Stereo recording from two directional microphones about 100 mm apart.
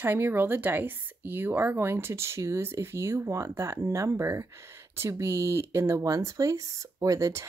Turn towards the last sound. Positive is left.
turn(degrees=-30)  # may be behind; listen again after turning